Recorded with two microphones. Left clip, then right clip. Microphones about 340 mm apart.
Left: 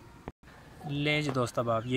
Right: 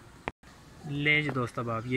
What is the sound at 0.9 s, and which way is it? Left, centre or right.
Speech, centre.